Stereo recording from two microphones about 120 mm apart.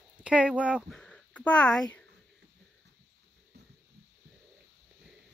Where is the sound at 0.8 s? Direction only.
5° left (ahead or behind).